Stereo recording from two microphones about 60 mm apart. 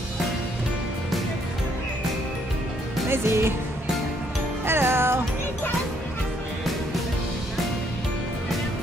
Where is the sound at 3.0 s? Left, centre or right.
Right.